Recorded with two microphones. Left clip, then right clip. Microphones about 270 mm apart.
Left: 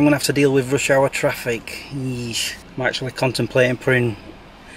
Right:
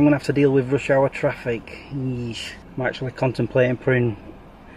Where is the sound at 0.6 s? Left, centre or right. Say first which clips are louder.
Left 2 dB; centre.